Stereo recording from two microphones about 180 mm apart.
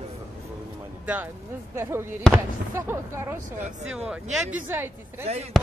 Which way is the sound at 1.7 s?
15° right (ahead or behind).